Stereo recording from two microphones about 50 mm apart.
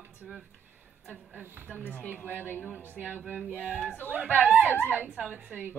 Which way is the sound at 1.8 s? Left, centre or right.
Left.